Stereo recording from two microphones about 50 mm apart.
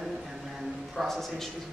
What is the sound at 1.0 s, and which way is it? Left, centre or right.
Speech, centre.